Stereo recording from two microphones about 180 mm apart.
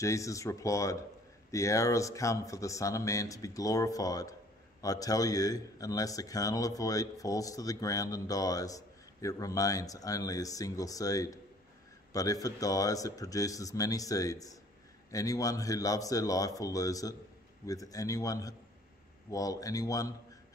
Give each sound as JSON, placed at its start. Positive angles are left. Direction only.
{"t": 0.0, "sound": "speech", "side_deg": 15}